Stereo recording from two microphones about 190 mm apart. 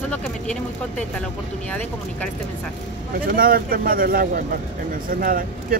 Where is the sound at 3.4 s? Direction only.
50° right (ahead or behind).